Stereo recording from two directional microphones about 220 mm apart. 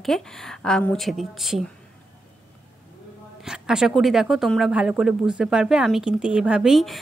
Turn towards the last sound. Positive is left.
turn(degrees=0)  # may be behind; listen again after turning